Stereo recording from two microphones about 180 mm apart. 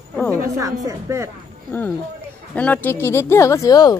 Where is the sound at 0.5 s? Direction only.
15° right (ahead or behind).